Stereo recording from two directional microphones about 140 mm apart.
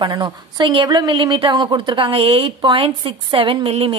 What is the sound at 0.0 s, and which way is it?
A woman's voice, 30° right (ahead or behind).